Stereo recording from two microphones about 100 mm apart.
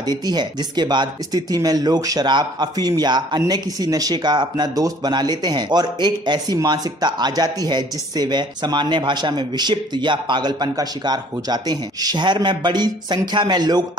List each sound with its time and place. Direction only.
0.2 s speech: 45° right (ahead or behind)